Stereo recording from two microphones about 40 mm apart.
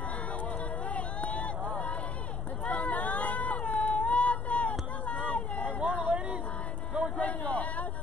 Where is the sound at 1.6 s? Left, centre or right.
Left.